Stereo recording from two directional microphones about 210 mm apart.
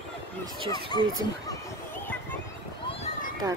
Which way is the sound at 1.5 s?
10° left (ahead or behind).